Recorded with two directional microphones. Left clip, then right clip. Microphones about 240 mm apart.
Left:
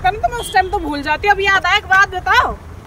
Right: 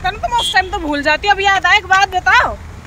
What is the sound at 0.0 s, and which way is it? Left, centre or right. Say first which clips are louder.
Vehicle: left 1 dB; centre.